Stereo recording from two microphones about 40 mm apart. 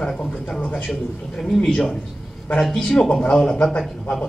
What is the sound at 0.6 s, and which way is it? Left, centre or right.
Speech, left.